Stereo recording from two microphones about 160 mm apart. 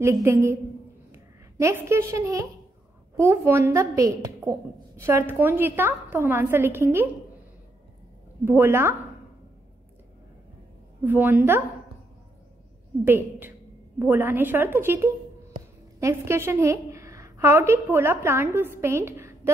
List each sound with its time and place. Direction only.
0.0 s a woman's voice: 15° right (ahead or behind)
8.5 s a woman's voice: 15° right (ahead or behind)
11.1 s a woman's voice: 10° right (ahead or behind)
13.0 s a woman's voice: 15° right (ahead or behind)